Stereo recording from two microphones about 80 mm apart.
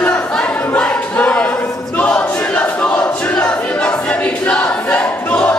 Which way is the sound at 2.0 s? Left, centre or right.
Centre.